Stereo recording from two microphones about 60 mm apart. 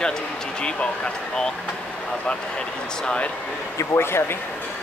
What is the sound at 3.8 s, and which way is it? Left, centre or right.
Speech, left.